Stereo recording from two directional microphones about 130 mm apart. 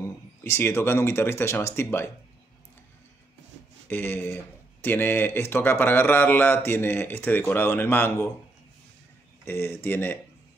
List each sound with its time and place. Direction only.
0.4 s a man's voice: 15° left (ahead or behind)
3.9 s a man's voice: 15° left (ahead or behind)
9.4 s a man's voice: 15° left (ahead or behind)